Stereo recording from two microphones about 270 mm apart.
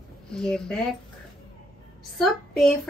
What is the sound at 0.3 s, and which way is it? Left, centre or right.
Speech, centre.